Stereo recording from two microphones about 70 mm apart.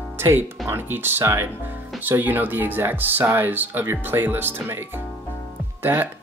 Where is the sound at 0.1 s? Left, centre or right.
Right.